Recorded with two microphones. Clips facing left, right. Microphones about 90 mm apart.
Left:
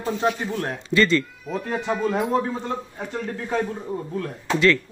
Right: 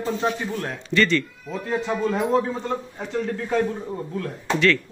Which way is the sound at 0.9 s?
10° left (ahead or behind).